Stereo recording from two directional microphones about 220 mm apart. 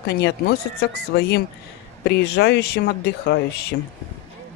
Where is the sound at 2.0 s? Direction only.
50° left (ahead or behind).